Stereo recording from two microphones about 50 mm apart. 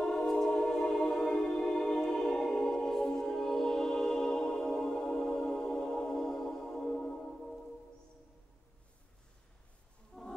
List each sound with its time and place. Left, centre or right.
0.0 s music: centre